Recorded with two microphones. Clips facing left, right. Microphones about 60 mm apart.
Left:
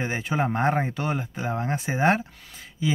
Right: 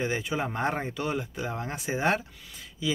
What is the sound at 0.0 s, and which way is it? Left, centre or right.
Speech, left.